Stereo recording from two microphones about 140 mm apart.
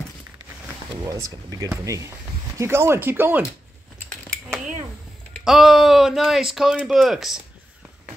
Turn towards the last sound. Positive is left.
turn(degrees=0)  # may be behind; listen again after turning